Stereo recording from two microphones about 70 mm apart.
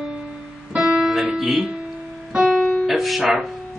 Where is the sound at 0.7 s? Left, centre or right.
Centre.